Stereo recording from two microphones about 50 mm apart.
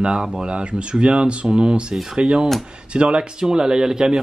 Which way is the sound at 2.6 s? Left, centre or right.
Centre.